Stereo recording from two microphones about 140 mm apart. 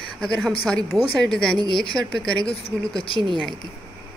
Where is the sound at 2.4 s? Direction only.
45° left (ahead or behind).